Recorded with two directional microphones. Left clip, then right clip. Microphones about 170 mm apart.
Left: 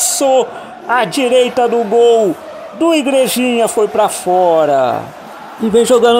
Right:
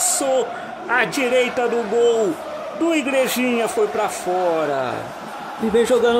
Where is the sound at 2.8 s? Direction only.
20° left (ahead or behind).